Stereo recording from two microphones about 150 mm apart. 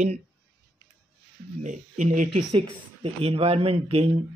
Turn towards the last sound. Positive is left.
turn(degrees=-40)  # may be behind; listen again after turning